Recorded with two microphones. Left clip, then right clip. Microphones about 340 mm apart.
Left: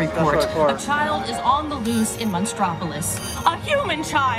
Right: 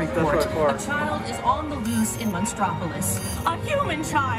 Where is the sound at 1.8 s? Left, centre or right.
Centre.